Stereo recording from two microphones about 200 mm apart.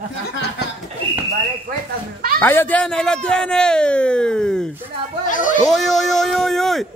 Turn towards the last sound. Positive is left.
turn(degrees=0)  # may be behind; listen again after turning